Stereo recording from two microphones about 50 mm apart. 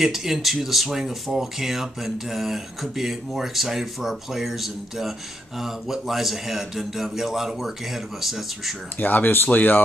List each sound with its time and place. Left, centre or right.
0.0 s speech: centre
8.9 s speech: left